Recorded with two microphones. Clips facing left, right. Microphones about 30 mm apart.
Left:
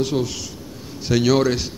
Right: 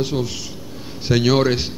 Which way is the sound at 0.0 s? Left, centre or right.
Centre.